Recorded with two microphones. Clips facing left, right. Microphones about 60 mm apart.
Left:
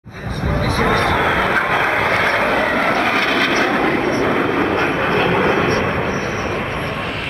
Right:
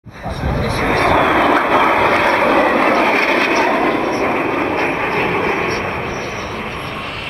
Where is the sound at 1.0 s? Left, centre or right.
Right.